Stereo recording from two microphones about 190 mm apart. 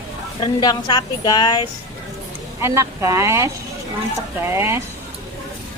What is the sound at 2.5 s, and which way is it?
Speech, 15° right (ahead or behind).